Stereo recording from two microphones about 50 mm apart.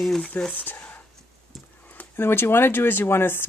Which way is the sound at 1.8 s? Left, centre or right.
Left.